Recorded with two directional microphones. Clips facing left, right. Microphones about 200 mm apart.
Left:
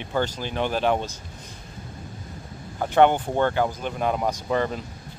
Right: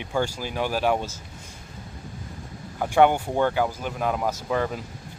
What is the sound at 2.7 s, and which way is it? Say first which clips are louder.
Speech: left 1 dB; 10° right (ahead or behind).